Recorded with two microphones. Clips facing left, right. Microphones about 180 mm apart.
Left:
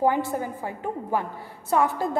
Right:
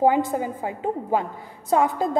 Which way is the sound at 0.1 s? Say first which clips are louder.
Right 3 dB; 15° right (ahead or behind).